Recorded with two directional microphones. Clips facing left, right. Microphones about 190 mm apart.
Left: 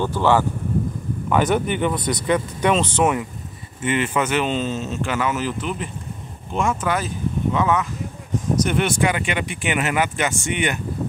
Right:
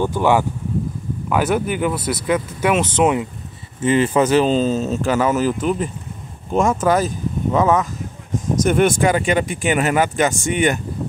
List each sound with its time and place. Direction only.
0.0 s speech: 15° right (ahead or behind)
1.3 s speech: 5° right (ahead or behind)
3.8 s speech: 35° right (ahead or behind)